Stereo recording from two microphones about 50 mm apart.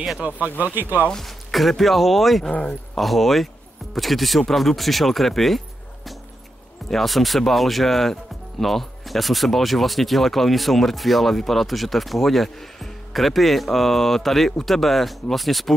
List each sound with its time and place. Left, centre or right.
0.2 s speech: right
1.1 s speech: centre
2.5 s speech: left
3.0 s speech: centre
6.9 s speech: centre